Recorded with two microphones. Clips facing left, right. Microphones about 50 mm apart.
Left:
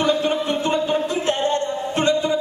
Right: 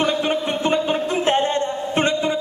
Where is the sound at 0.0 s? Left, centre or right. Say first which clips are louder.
Left 1 dB; right.